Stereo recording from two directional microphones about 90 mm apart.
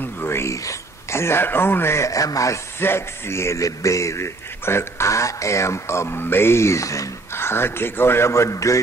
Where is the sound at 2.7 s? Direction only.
25° left (ahead or behind).